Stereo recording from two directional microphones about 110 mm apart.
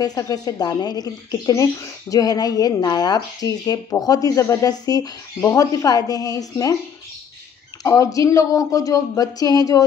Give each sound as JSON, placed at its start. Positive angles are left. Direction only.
{"t": 0.0, "sound": "speech", "side_deg": 35}
{"t": 7.8, "sound": "speech", "side_deg": 30}